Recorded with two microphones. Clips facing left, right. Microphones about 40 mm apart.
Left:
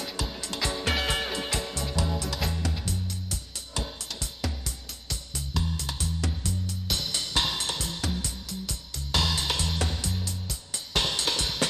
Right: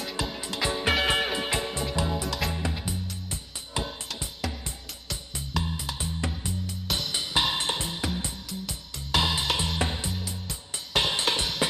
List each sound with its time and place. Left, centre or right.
0.1 s music: centre
2.2 s music: centre
2.5 s music: centre
5.6 s music: right